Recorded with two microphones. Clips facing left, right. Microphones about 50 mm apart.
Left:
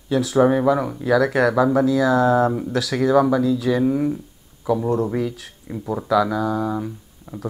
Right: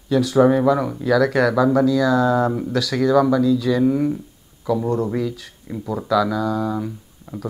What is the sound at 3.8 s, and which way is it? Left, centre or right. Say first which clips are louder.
Speech: right 1 dB; centre.